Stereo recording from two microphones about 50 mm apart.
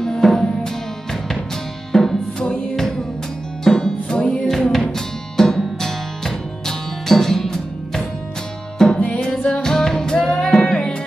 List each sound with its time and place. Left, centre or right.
0.0 s music: centre
1.9 s music: centre